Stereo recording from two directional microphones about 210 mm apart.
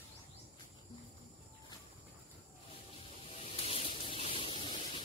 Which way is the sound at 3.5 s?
30° left (ahead or behind).